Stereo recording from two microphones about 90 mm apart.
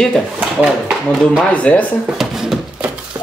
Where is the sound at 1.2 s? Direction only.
10° left (ahead or behind).